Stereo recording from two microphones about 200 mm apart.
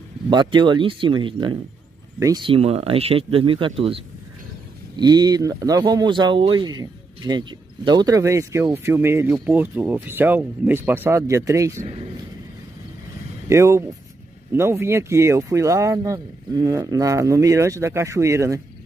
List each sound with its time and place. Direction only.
0.3 s speech: 20° right (ahead or behind)
13.5 s speech: 15° right (ahead or behind)